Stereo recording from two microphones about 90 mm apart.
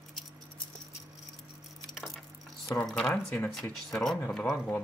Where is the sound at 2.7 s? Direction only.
10° left (ahead or behind).